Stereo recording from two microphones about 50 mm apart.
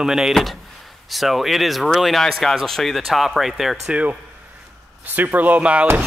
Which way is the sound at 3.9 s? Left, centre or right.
Right.